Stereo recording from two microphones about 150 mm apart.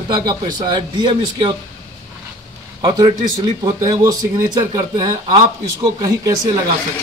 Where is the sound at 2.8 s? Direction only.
30° right (ahead or behind).